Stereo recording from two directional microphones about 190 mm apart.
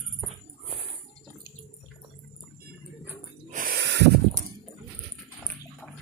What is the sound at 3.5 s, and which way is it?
Snort, 50° right (ahead or behind).